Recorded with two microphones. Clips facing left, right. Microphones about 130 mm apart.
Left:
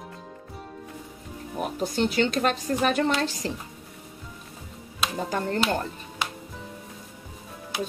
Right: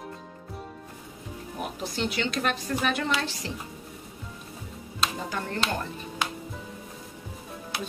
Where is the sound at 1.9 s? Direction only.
45° left (ahead or behind).